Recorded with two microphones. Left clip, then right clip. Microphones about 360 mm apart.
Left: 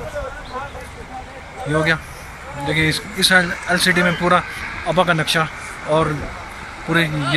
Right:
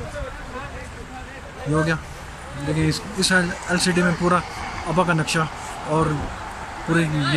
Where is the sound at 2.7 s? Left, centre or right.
Centre.